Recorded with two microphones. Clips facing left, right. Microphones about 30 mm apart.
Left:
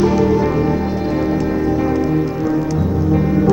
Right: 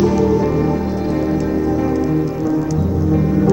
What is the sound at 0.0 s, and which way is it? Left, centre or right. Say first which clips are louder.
Music: even; centre.